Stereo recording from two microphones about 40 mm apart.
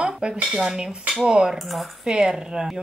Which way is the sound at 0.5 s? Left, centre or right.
Centre.